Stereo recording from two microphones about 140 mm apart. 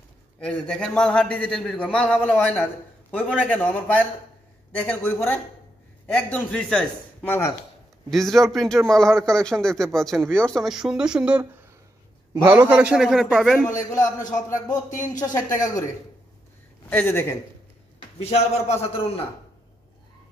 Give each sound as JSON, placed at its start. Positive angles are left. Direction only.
{"t": 0.4, "sound": "a man's voice", "side_deg": 5}
{"t": 12.4, "sound": "a man's voice", "side_deg": -15}
{"t": 13.7, "sound": "a man's voice", "side_deg": 25}
{"t": 16.9, "sound": "a man's voice", "side_deg": 15}
{"t": 18.2, "sound": "a man's voice", "side_deg": 50}